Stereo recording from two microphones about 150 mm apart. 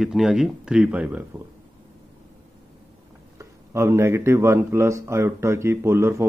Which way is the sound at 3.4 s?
20° right (ahead or behind).